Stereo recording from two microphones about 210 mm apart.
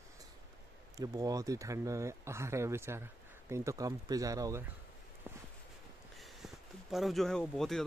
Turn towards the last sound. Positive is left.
turn(degrees=0)  # may be behind; listen again after turning